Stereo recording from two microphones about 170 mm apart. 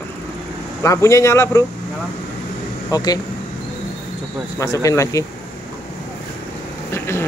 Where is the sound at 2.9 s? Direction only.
20° left (ahead or behind).